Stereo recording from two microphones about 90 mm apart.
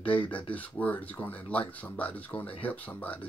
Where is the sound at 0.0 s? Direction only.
15° left (ahead or behind).